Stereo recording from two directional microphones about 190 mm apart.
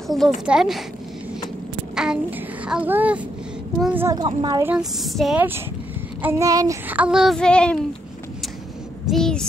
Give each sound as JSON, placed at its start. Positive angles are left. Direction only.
{"t": 0.1, "sound": "child singing", "side_deg": 0}
{"t": 2.6, "sound": "speech", "side_deg": -5}
{"t": 4.2, "sound": "a woman's voice", "side_deg": -25}
{"t": 4.6, "sound": "child singing", "side_deg": -5}
{"t": 9.1, "sound": "a sound", "side_deg": 5}